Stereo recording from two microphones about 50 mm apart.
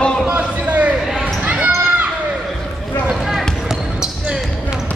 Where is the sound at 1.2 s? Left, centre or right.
Right.